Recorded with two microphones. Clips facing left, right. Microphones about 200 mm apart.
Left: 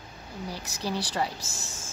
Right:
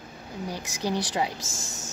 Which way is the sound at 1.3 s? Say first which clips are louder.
Right 3 dB; 45° right (ahead or behind).